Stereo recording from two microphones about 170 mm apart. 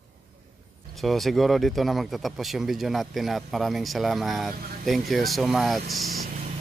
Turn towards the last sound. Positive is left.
turn(degrees=0)  # may be behind; listen again after turning